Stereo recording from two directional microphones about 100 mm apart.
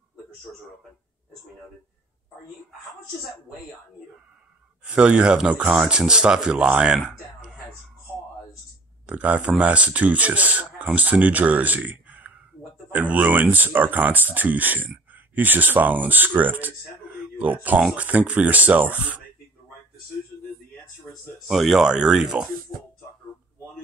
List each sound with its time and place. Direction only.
4.8 s speech: 10° right (ahead or behind)
9.0 s speech: 15° right (ahead or behind)
21.1 s speech: centre (ahead or behind)